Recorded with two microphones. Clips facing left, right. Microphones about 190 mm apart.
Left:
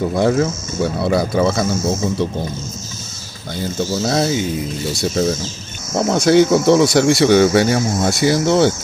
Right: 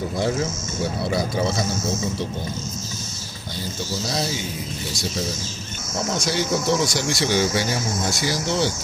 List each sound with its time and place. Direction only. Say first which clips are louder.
0.1 s speech: left 7 dB; 65° left (ahead or behind)
3.9 s speech: left 8 dB; 60° left (ahead or behind)
5.9 s speech: left 12 dB; 65° left (ahead or behind)